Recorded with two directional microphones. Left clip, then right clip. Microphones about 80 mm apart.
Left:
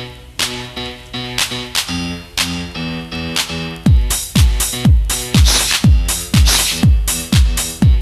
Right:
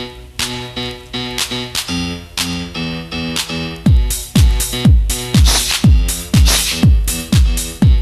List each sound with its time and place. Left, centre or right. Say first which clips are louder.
0.0 s music: left 1 dB; right